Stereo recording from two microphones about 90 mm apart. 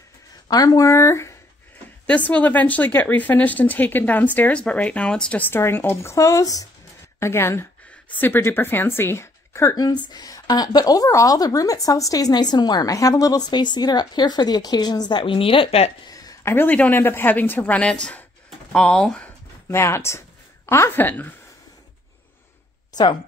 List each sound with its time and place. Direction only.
0.5 s speech: 45° left (ahead or behind)
2.0 s a woman's voice: 15° left (ahead or behind)
5.4 s speech: 25° left (ahead or behind)
9.8 s a woman's voice: 50° left (ahead or behind); by 15.8 s 90° left
16.1 s a sound: 40° left (ahead or behind)
16.4 s a woman's voice: 20° left (ahead or behind)
19.7 s speech: 30° left (ahead or behind)